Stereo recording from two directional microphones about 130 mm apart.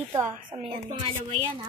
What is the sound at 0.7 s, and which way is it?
Speech, 40° right (ahead or behind).